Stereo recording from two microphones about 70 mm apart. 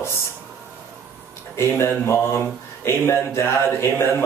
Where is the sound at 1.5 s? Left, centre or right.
Left.